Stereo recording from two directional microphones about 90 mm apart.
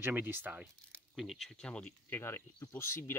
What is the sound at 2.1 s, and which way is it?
Speech, 25° left (ahead or behind).